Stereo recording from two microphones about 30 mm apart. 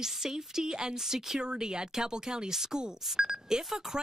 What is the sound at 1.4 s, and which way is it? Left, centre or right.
Speech, right.